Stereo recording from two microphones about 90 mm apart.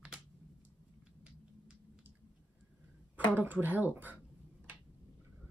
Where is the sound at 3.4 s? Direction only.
20° right (ahead or behind).